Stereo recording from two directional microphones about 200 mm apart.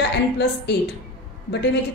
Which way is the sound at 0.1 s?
55° left (ahead or behind).